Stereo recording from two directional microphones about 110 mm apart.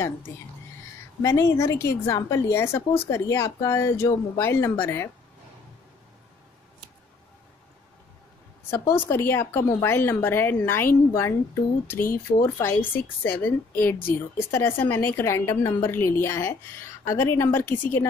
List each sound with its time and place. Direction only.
1.2 s a woman's voice: 30° left (ahead or behind)
8.6 s a woman's voice: 25° left (ahead or behind)